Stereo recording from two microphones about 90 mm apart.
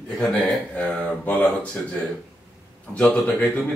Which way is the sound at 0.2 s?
10° left (ahead or behind).